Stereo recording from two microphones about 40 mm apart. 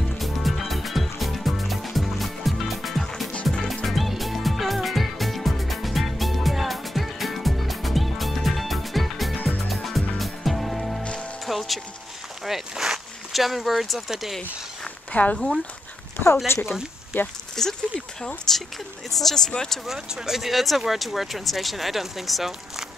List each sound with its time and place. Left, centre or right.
0.2 s music: centre
12.4 s a sound: centre
15.1 s speech: left
16.5 s speech: left
17.1 s speech: left
17.6 s speech: centre
18.5 s a sound: centre
19.0 s speech: centre
20.2 s speech: centre